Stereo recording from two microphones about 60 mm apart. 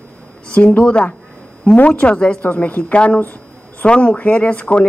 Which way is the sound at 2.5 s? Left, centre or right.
Left.